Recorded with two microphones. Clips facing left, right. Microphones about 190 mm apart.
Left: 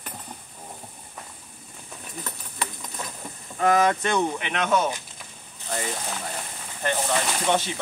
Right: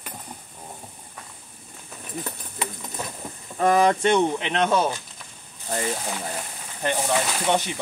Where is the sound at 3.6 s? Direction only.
30° right (ahead or behind).